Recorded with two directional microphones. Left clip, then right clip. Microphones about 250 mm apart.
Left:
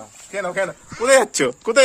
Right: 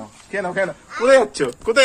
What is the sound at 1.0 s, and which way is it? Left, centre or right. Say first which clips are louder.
Speech: right 1 dB; left.